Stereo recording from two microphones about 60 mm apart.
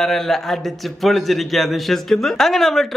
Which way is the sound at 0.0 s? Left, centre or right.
Centre.